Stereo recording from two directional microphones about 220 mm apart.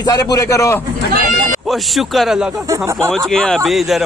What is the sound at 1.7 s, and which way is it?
Speech, centre (ahead or behind).